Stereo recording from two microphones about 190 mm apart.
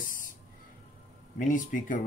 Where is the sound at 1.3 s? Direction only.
45° left (ahead or behind).